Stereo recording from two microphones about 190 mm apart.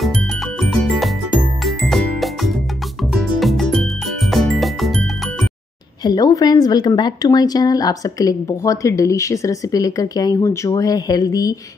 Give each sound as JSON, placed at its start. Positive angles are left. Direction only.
{"t": 0.6, "sound": "music", "side_deg": 0}
{"t": 6.0, "sound": "a woman's voice", "side_deg": 20}